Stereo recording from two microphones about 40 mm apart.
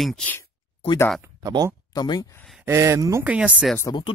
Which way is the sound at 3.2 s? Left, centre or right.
Right.